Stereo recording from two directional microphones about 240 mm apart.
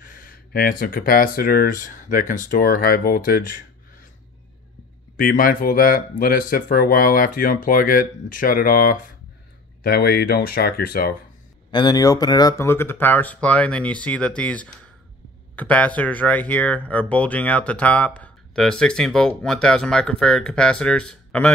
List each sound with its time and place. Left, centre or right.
0.0 s speech: left
5.1 s speech: left
11.7 s speech: centre